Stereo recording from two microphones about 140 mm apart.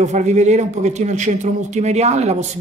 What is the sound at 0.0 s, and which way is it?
A man's voice, 55° right (ahead or behind).